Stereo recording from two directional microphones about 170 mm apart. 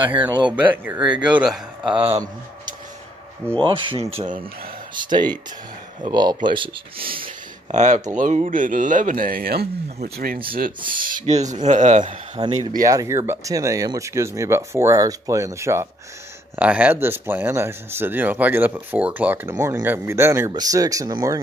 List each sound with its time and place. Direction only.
0.2 s speech: 25° right (ahead or behind)
0.6 s a man's voice: 10° right (ahead or behind)
1.9 s speech: 30° right (ahead or behind)
3.6 s speech: 30° right (ahead or behind)
7.7 s speech: 45° right (ahead or behind)
12.0 s speech: 25° right (ahead or behind)